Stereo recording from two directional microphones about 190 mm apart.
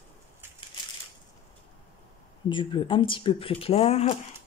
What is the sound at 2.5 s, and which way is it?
Speech, 25° left (ahead or behind).